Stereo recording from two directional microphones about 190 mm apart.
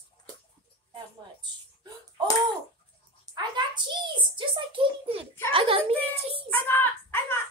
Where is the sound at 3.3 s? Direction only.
25° right (ahead or behind).